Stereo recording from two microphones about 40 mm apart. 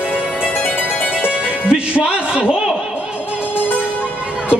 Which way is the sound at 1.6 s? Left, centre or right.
Right.